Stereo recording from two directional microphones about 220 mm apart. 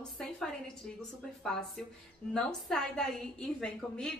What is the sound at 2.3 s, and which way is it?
A woman's voice, 5° left (ahead or behind).